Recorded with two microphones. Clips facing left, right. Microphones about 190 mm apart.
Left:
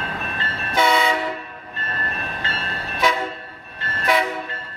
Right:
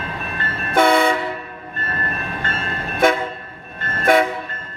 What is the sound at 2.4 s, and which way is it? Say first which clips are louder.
Train: right 3 dB; 50° right (ahead or behind).